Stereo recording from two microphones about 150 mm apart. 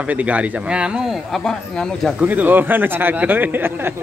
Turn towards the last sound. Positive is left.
turn(degrees=-15)  # may be behind; listen again after turning